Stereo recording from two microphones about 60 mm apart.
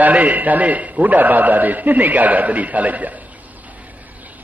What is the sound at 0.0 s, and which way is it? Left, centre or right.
A man's voice, right.